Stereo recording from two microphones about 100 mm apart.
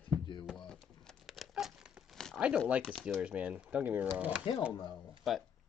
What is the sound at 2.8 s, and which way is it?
Speech, 5° left (ahead or behind).